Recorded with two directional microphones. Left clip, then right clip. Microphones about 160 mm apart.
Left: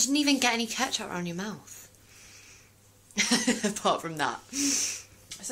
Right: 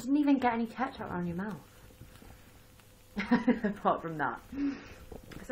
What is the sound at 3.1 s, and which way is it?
Speech, 35° left (ahead or behind).